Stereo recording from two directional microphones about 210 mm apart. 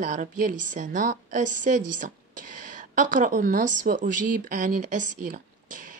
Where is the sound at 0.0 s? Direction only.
35° right (ahead or behind).